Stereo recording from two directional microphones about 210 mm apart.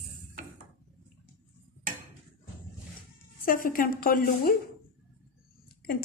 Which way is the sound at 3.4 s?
40° left (ahead or behind).